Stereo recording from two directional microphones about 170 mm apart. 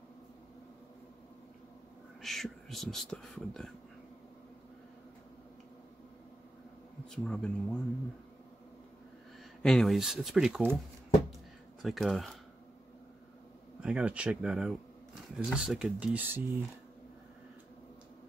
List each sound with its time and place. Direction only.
2.2 s speech: centre (ahead or behind)
7.1 s speech: 5° left (ahead or behind)
9.6 s speech: 5° left (ahead or behind)
11.8 s speech: centre (ahead or behind)
13.7 s speech: 5° right (ahead or behind)